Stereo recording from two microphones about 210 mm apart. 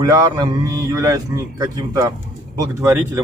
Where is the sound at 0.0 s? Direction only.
20° right (ahead or behind).